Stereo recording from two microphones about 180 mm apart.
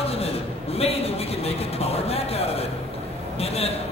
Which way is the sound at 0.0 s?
35° left (ahead or behind).